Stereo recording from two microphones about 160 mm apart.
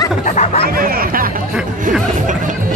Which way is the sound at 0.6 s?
65° right (ahead or behind).